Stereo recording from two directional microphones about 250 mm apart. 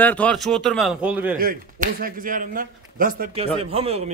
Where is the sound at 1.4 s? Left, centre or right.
Right.